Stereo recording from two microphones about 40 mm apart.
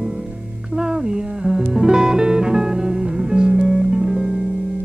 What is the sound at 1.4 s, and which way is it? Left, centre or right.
Music, centre.